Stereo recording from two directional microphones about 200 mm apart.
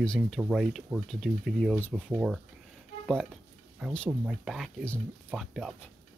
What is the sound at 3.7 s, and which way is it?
Speech, centre (ahead or behind).